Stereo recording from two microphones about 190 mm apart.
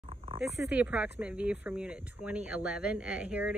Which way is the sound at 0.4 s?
10° right (ahead or behind).